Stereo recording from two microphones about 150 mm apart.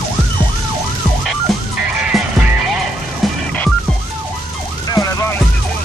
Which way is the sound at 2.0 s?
5° right (ahead or behind).